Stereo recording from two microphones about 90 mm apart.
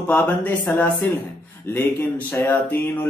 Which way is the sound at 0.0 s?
15° left (ahead or behind).